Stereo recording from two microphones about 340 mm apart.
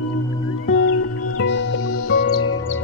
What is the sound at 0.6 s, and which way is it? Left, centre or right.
Music, left.